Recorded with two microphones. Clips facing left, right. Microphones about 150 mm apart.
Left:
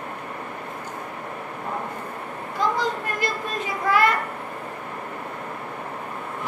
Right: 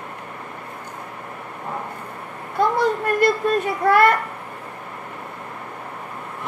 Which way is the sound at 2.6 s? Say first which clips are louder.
Right 5 dB; 60° right (ahead or behind).